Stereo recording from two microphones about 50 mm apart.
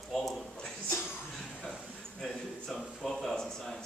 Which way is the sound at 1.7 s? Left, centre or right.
Centre.